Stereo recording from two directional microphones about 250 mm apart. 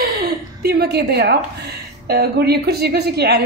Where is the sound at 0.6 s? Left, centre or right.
Right.